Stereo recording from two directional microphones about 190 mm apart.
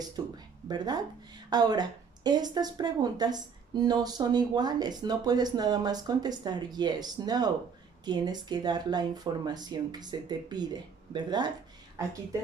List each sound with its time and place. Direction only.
0.2 s a woman's voice: 20° right (ahead or behind)